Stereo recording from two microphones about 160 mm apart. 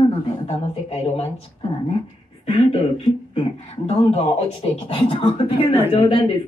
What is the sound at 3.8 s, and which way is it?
Speech, 40° left (ahead or behind).